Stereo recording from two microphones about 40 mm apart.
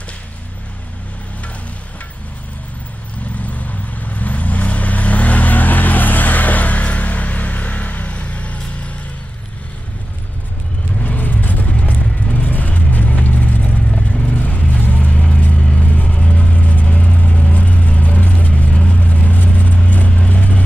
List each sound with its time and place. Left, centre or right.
3.4 s vehicle: left
11.0 s vehicle: left
12.4 s vehicle: left